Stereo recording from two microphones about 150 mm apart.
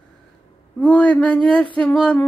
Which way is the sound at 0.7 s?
10° left (ahead or behind).